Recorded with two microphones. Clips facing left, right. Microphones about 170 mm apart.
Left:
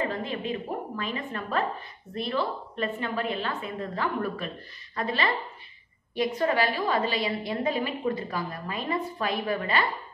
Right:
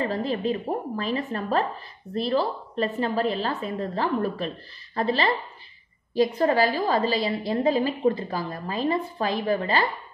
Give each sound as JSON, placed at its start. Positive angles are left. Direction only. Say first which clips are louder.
{"t": 0.0, "sound": "a woman's voice", "louder": "right 5 dB", "side_deg": -35}